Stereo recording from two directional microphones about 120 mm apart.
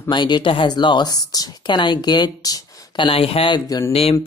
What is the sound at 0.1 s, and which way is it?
Speech, 40° left (ahead or behind).